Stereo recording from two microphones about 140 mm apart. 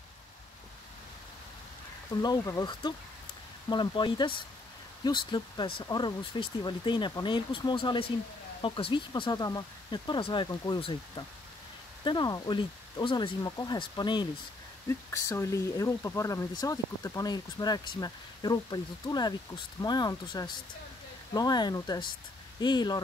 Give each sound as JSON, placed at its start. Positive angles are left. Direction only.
{"t": 2.2, "sound": "speech", "side_deg": 25}
{"t": 14.9, "sound": "speech", "side_deg": 20}